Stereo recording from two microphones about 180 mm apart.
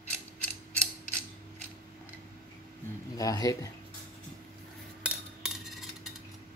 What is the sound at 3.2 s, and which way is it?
Speech, 20° left (ahead or behind).